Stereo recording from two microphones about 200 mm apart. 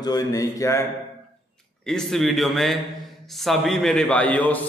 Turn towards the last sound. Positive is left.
turn(degrees=5)  # may be behind; listen again after turning